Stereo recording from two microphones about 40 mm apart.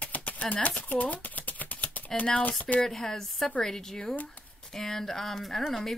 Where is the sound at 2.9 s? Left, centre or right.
Centre.